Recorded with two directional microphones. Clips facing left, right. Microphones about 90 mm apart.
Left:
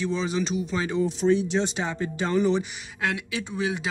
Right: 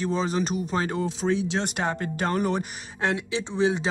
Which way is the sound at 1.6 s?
55° right (ahead or behind).